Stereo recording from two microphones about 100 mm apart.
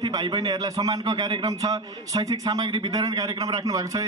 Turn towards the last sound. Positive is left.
turn(degrees=-35)  # may be behind; listen again after turning